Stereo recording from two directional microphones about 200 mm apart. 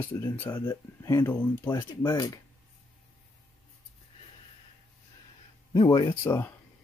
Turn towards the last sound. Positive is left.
turn(degrees=15)  # may be behind; listen again after turning